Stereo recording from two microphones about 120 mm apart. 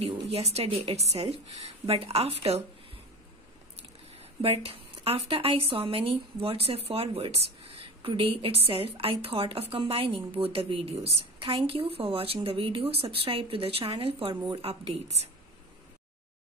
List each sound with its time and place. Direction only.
0.0 s a woman's voice: 60° right (ahead or behind)
4.2 s a woman's voice: 50° right (ahead or behind)